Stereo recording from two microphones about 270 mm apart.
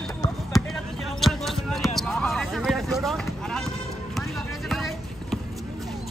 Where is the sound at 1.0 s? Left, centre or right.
Centre.